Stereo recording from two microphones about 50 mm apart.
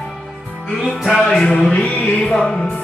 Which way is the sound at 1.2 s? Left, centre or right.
Left.